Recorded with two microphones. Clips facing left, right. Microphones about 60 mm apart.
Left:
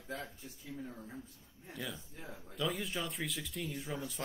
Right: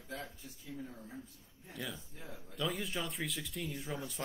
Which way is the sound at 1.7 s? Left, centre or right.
Centre.